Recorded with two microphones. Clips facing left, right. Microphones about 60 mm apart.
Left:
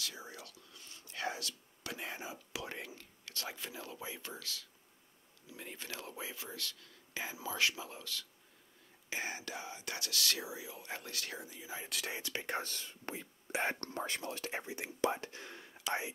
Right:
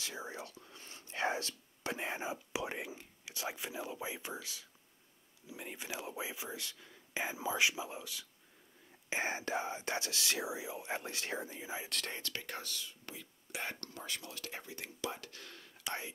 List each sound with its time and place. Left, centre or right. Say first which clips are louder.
0.0 s speech: right 3 dB; right
9.1 s speech: right 5 dB; right
11.8 s speech: left 1 dB; centre
12.3 s speech: left 5 dB; left
12.6 s speech: left 2 dB; left; by 16.1 s centre